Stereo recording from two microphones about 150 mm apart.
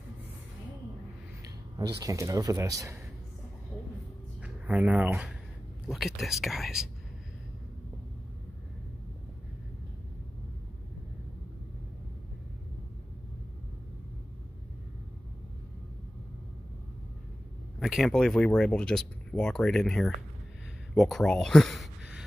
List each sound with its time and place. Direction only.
1.8 s speech: 20° right (ahead or behind)
4.4 s speech: 10° right (ahead or behind)
17.7 s speech: centre (ahead or behind)